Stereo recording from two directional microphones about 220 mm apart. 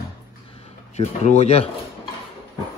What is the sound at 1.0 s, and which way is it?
Speech, 30° left (ahead or behind).